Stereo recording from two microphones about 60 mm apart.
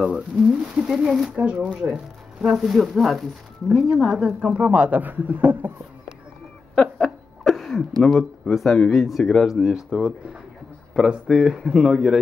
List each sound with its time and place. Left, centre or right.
0.0 s speech: centre
2.4 s speech: centre; by 5.7 s right
6.7 s a sound: centre
7.4 s speech: centre